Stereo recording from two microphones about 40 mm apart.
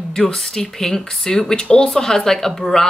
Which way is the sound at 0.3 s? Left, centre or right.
Centre.